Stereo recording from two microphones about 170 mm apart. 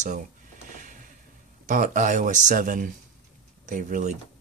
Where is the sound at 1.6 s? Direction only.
50° right (ahead or behind).